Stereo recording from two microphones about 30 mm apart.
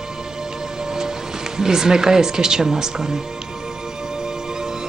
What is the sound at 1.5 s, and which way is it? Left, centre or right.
Speech, right.